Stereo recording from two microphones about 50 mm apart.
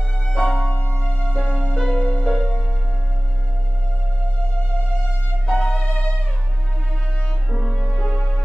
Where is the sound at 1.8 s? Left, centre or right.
Centre.